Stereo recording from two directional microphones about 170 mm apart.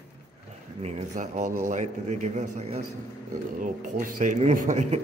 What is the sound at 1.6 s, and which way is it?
A man's voice, 45° right (ahead or behind).